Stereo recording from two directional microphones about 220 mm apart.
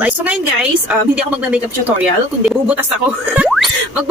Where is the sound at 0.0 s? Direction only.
5° right (ahead or behind).